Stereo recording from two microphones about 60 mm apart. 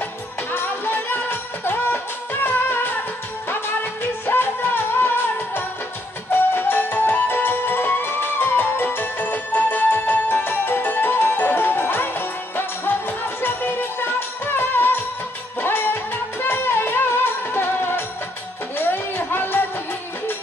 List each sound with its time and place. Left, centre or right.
0.5 s music: left
4.9 s music: left